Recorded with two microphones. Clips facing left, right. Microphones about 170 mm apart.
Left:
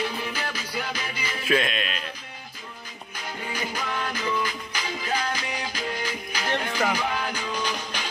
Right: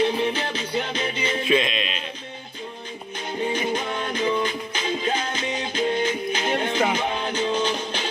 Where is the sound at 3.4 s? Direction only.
25° right (ahead or behind).